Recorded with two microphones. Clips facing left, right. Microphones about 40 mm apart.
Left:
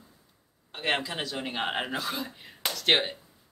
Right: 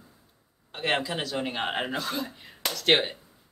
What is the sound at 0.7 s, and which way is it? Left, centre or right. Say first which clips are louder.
Speech: right 2 dB; centre.